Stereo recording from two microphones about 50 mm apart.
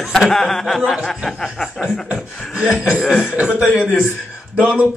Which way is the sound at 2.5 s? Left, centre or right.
Centre.